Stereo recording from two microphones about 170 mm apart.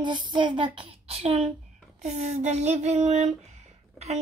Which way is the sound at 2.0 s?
40° right (ahead or behind).